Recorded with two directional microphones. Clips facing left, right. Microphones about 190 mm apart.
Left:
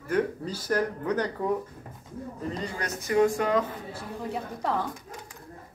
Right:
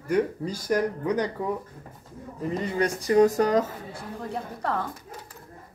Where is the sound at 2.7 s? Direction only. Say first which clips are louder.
Right 5 dB; 30° right (ahead or behind).